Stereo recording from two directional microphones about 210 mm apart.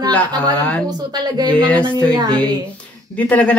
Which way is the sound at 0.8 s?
20° right (ahead or behind).